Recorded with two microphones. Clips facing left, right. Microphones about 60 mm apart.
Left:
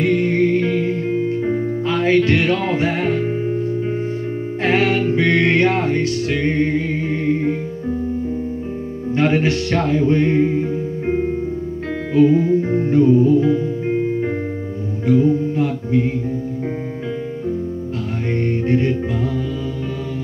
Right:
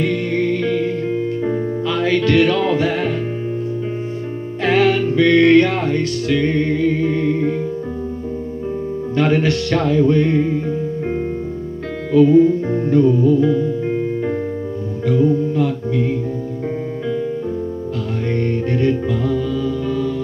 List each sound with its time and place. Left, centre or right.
0.0 s music: left
4.6 s music: left
9.1 s music: left
12.1 s music: left
18.3 s music: left